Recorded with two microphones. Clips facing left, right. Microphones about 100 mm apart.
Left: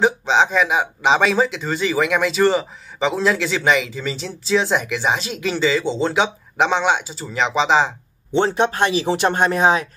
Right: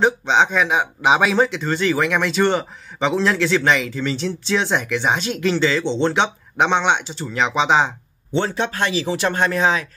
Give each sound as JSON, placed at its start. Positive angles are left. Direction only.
{"t": 0.0, "sound": "speech", "side_deg": 0}
{"t": 8.4, "sound": "speech", "side_deg": 20}